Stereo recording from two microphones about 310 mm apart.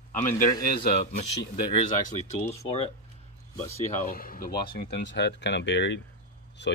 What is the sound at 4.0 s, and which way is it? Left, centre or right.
A man's voice, left.